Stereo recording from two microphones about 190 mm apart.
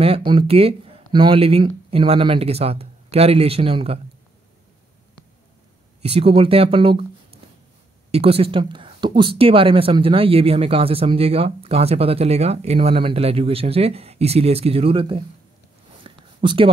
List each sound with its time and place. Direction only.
0.0 s speech: 30° right (ahead or behind)
6.0 s speech: 30° right (ahead or behind)
8.1 s speech: 30° right (ahead or behind)
16.0 s a sound: 25° right (ahead or behind)